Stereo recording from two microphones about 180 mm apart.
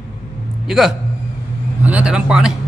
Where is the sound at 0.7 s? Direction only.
Centre (ahead or behind).